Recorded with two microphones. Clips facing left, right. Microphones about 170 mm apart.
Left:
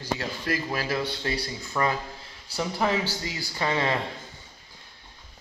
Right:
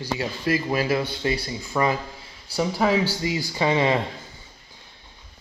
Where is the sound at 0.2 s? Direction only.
10° right (ahead or behind).